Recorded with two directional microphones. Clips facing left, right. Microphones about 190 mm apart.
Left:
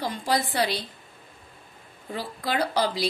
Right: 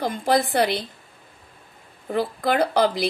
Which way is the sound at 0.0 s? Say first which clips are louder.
Right 5 dB; 50° right (ahead or behind).